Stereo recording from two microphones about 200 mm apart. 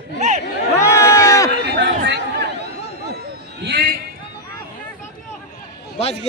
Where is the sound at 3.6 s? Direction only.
55° right (ahead or behind).